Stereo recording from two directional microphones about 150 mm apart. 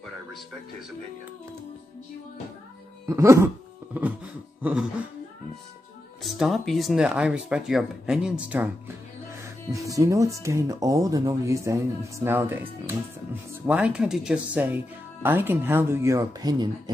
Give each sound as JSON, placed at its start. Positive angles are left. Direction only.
{"t": 3.1, "sound": "speech", "side_deg": -20}
{"t": 6.2, "sound": "speech", "side_deg": 0}